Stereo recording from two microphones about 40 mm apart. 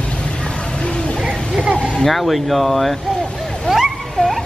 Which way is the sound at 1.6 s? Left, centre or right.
Right.